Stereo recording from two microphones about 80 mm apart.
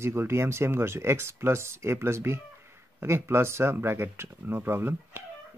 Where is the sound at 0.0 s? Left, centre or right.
Right.